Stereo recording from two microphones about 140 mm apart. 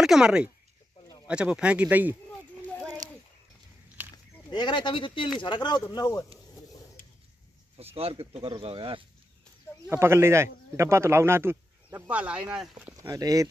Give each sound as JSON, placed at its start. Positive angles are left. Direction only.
{"t": 0.0, "sound": "speech", "side_deg": -5}
{"t": 3.0, "sound": "a sound", "side_deg": -60}
{"t": 4.5, "sound": "speech", "side_deg": 35}
{"t": 7.7, "sound": "speech", "side_deg": -45}
{"t": 9.8, "sound": "speech", "side_deg": -20}
{"t": 12.9, "sound": "speech", "side_deg": -25}